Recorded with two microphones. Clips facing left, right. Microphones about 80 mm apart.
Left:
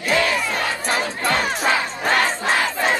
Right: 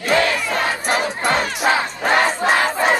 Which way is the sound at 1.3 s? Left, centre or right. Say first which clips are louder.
Right 2 dB; right.